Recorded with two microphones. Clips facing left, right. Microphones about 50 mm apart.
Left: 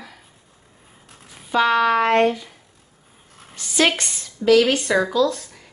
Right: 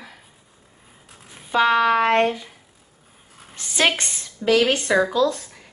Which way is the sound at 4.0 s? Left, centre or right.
Right.